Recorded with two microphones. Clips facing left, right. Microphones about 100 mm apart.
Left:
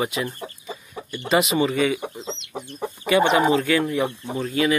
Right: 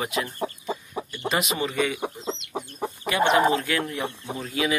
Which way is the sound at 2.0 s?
10° right (ahead or behind).